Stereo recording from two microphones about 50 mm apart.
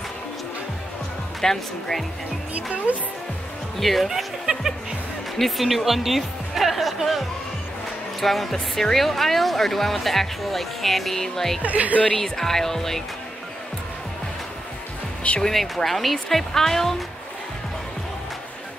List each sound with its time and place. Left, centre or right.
1.4 s speech: centre
2.5 s speech: right
3.8 s speech: centre
5.4 s speech: centre
11.6 s speech: right
12.2 s speech: centre
15.4 s speech: centre